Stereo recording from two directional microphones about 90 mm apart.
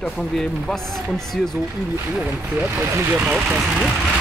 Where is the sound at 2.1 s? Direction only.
10° right (ahead or behind).